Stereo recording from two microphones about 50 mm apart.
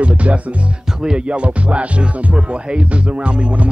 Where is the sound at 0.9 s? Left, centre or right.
Centre.